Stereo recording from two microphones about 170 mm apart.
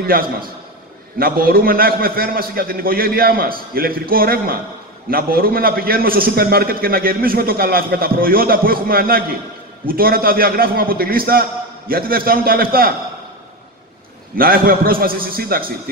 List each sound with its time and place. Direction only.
0.1 s a man's voice: 60° right (ahead or behind)
14.3 s a man's voice: 60° right (ahead or behind)